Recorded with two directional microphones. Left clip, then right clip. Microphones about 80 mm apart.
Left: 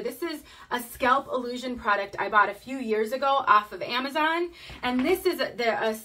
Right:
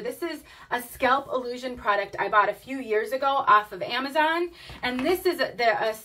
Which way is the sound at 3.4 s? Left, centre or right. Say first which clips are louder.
Right 1 dB; left.